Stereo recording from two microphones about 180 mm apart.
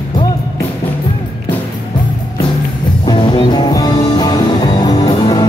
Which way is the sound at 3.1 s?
25° left (ahead or behind).